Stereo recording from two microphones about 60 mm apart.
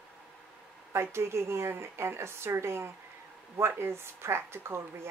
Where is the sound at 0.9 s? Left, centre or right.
Right.